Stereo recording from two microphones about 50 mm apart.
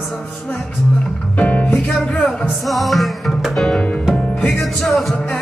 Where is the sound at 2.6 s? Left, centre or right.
Centre.